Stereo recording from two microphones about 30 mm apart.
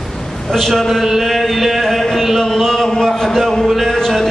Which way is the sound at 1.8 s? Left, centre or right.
Centre.